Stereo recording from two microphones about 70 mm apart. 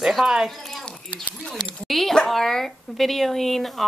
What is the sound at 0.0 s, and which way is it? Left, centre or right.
Speech, centre.